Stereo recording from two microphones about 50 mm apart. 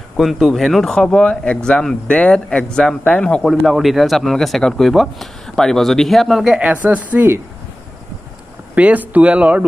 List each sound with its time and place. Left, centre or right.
0.2 s speech: centre; by 3.4 s left
3.4 s speech: centre
6.6 s speech: right
8.7 s speech: right